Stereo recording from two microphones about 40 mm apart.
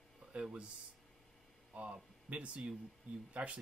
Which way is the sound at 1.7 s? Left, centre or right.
Right.